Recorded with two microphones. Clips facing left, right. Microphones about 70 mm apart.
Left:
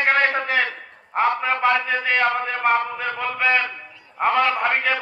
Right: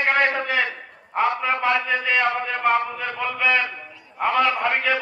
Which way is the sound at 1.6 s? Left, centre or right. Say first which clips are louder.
Left 3 dB; left.